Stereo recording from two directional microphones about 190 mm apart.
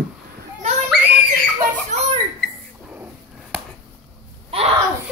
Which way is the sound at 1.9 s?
40° right (ahead or behind).